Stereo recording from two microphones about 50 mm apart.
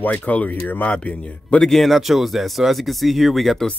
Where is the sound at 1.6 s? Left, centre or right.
Centre.